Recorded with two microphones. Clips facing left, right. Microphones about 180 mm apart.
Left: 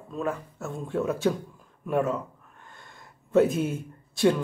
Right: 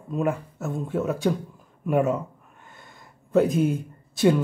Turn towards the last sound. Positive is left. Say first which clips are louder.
# right 2 dB
turn(degrees=0)  # may be behind; listen again after turning